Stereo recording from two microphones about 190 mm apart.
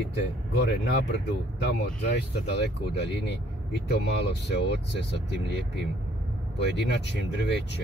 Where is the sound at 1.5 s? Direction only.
60° left (ahead or behind).